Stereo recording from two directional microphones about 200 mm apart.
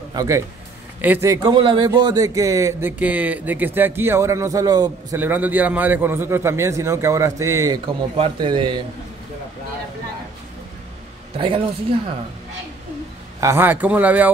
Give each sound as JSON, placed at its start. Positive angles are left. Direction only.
{"t": 0.1, "sound": "a man's voice", "side_deg": -20}
{"t": 11.3, "sound": "a woman's voice", "side_deg": -25}
{"t": 13.4, "sound": "a man's voice", "side_deg": -10}